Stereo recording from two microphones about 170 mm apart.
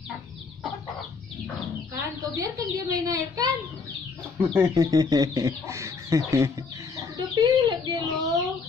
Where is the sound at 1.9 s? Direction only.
20° right (ahead or behind).